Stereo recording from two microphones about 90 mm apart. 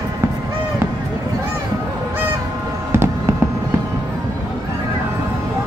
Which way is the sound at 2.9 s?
30° right (ahead or behind).